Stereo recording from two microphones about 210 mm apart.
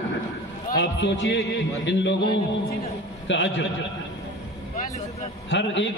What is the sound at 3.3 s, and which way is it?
Speech, 60° left (ahead or behind).